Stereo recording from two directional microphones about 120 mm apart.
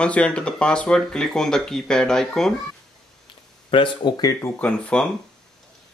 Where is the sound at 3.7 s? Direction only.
45° left (ahead or behind).